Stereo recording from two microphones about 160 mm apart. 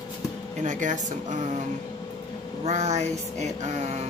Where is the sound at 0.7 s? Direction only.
50° right (ahead or behind).